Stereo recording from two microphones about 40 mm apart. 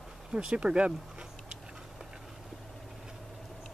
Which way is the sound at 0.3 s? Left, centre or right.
Right.